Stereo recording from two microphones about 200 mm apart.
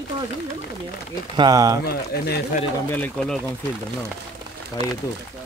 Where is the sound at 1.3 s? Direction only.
20° right (ahead or behind).